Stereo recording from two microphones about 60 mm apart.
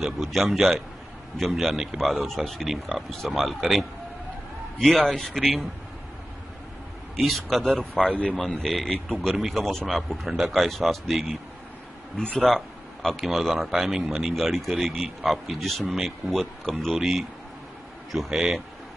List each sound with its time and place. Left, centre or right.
0.0 s speech: centre
4.7 s a man's voice: centre
7.2 s speech: centre
8.1 s a man's voice: centre
8.4 s speech: centre
12.2 s a man's voice: centre
12.4 s a sound: centre
13.2 s speech: centre